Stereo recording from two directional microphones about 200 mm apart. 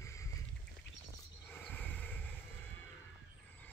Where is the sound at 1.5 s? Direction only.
10° left (ahead or behind).